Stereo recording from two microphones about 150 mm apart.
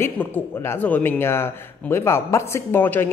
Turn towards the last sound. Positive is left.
turn(degrees=15)  # may be behind; listen again after turning